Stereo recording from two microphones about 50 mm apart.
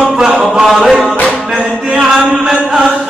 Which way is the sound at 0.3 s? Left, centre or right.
Right.